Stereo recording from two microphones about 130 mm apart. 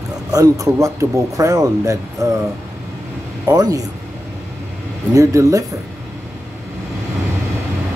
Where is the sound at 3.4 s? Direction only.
30° right (ahead or behind).